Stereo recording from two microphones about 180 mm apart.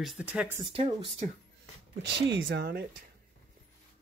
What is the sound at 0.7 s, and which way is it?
Speech, 25° right (ahead or behind).